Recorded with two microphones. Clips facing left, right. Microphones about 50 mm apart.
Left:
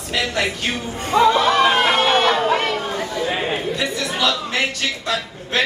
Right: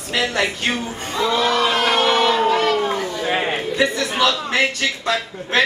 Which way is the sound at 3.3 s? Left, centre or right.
Right.